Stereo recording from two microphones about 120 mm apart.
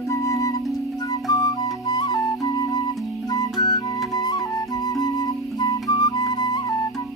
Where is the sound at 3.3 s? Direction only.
35° left (ahead or behind).